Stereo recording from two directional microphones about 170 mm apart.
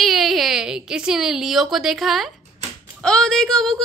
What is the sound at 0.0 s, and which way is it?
A woman's voice, centre (ahead or behind).